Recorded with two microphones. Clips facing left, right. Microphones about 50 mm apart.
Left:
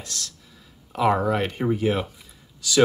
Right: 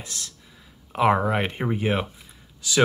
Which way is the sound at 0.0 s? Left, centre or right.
Right.